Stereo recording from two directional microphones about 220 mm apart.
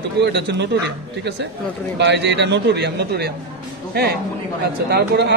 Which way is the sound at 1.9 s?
50° right (ahead or behind).